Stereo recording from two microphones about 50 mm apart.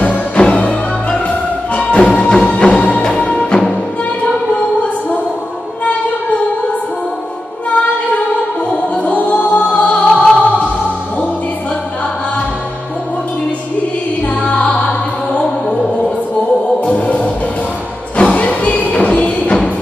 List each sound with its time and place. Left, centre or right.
0.0 s music: left
8.9 s music: left
14.2 s music: left
16.8 s music: left